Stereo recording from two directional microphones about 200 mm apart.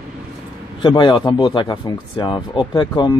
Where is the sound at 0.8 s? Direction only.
20° left (ahead or behind).